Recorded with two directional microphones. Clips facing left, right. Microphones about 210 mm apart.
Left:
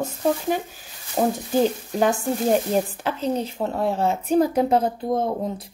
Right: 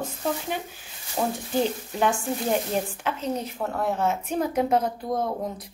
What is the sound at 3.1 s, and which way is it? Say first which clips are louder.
Speech: left 4 dB; 30° left (ahead or behind).